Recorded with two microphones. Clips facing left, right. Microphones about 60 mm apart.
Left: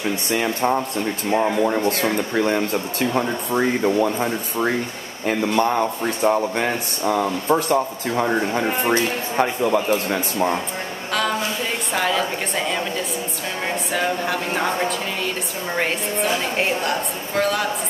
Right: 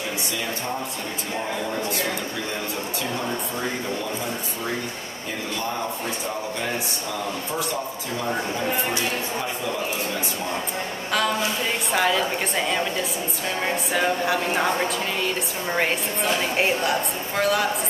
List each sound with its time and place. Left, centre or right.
0.3 s speech: left
5.5 s speech: left
11.1 s a sound: centre
11.9 s a woman's voice: centre